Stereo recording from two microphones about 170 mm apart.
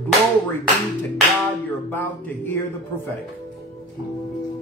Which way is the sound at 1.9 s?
10° left (ahead or behind).